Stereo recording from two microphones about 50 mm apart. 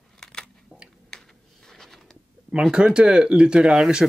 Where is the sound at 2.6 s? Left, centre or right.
Centre.